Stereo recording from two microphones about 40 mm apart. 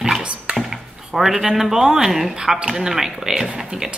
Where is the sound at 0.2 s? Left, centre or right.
Right.